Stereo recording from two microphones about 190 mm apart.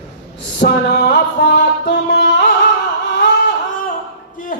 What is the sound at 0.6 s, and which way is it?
Music, 65° left (ahead or behind).